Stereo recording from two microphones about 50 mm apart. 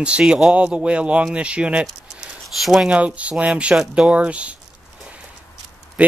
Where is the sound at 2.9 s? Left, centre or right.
Right.